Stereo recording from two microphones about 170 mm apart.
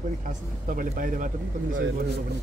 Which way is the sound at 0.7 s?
50° right (ahead or behind).